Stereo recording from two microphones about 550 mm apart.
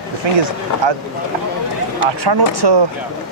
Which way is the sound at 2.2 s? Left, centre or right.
Right.